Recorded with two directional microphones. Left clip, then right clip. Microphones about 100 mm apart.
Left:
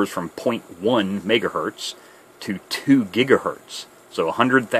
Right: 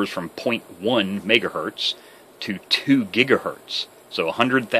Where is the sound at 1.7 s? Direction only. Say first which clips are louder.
Right 7 dB; 55° left (ahead or behind).